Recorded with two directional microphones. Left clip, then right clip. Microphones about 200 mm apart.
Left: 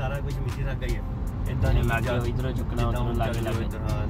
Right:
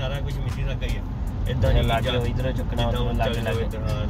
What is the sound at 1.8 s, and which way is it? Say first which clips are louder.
Speech: right 3 dB; 15° left (ahead or behind).